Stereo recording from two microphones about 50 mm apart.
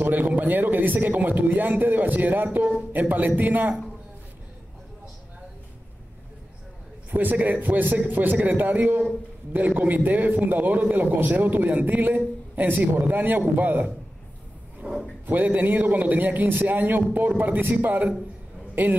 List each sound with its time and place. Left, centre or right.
0.0 s a man's voice: right
7.1 s a man's voice: right
17.4 s a man's voice: right